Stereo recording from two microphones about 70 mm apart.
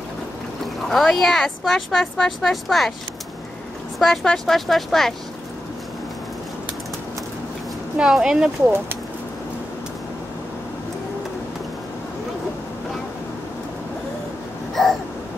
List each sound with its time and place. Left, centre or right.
0.8 s speech: centre
4.0 s speech: centre
8.0 s speech: centre
8.6 s speech: right